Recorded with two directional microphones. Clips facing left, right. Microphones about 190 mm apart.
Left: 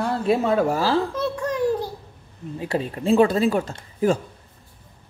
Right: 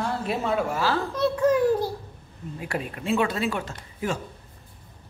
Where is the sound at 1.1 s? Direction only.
Centre (ahead or behind).